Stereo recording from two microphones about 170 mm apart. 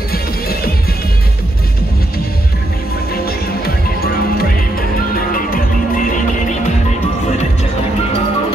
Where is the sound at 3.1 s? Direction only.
65° left (ahead or behind).